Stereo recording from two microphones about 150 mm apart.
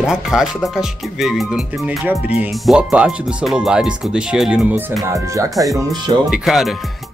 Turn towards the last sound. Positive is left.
turn(degrees=0)  # may be behind; listen again after turning